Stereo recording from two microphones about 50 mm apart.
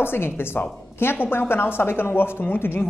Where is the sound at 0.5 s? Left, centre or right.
Left.